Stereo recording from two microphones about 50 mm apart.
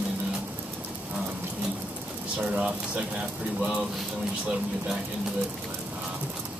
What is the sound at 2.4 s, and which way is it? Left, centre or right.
Speech, right.